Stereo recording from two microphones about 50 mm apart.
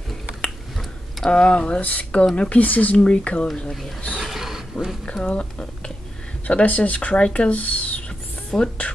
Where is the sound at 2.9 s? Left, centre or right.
Left.